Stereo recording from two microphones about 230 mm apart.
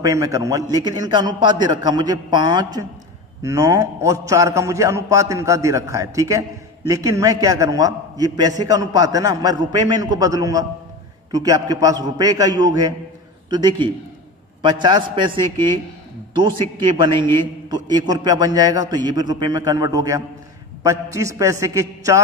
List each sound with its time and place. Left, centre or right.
0.0 s a man's voice: centre